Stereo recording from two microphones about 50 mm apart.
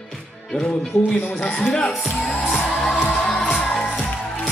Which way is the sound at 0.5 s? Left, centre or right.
Left.